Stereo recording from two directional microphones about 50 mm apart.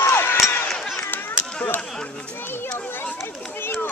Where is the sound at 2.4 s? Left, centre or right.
Left.